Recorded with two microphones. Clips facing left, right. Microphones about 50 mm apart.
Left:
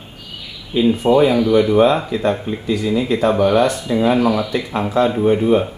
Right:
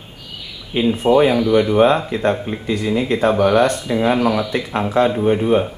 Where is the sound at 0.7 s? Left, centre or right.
Right.